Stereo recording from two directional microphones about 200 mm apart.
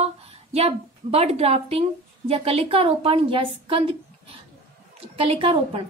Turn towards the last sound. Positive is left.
turn(degrees=-25)  # may be behind; listen again after turning